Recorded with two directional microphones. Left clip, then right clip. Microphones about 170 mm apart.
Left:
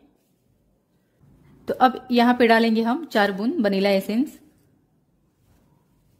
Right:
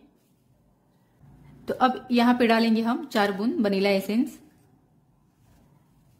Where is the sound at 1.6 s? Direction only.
20° left (ahead or behind).